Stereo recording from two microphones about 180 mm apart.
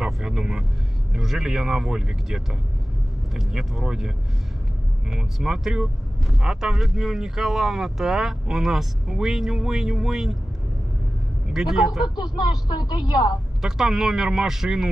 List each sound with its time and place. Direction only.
0.0 s vehicle: 5° right (ahead or behind)
1.1 s speech: centre (ahead or behind)
5.1 s speech: 5° right (ahead or behind)
11.5 s speech: centre (ahead or behind)
12.2 s speech: 25° left (ahead or behind)
13.6 s speech: 5° right (ahead or behind)